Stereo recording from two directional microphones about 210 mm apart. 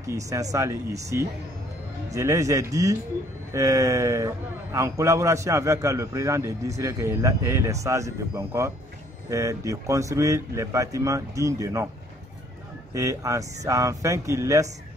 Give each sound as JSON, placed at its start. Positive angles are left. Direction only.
{"t": 0.0, "sound": "a man's voice", "side_deg": -15}
{"t": 12.9, "sound": "a man's voice", "side_deg": -15}